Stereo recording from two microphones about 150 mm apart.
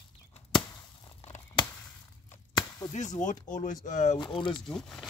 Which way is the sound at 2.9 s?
50° left (ahead or behind).